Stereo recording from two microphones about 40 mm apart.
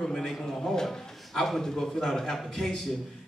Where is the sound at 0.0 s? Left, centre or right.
Centre.